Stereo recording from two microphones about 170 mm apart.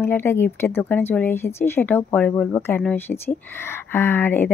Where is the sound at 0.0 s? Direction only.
15° left (ahead or behind).